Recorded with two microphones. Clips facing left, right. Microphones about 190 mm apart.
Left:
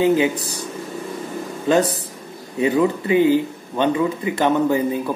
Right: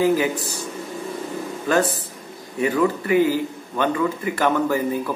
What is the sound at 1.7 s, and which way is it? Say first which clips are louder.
Speech: left 3 dB; 20° left (ahead or behind).